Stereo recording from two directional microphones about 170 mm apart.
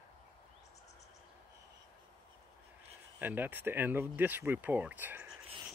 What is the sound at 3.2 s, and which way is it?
Speech, 10° right (ahead or behind).